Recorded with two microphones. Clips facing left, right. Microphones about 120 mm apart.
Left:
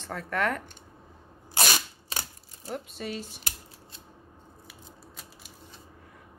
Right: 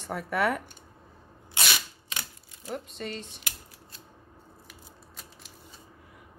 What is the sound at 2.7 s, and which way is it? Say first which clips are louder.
Speech: left 1 dB; 5° left (ahead or behind).